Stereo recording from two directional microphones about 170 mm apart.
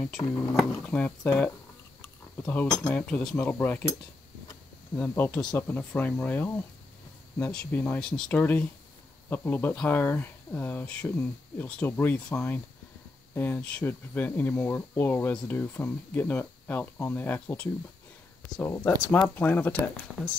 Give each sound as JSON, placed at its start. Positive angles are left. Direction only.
{"t": 0.3, "sound": "speech", "side_deg": 15}
{"t": 4.9, "sound": "speech", "side_deg": 10}
{"t": 7.5, "sound": "speech", "side_deg": 5}